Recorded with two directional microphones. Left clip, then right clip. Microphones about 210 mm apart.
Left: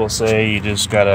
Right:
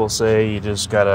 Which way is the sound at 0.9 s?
5° right (ahead or behind).